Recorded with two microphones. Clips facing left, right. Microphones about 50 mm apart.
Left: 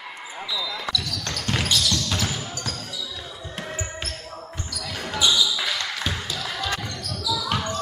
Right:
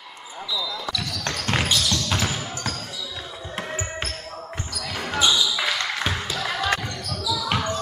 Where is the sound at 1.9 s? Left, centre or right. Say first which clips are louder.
Right 1 dB; centre.